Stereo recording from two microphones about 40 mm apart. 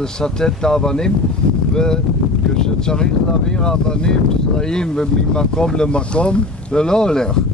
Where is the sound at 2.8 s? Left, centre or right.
Centre.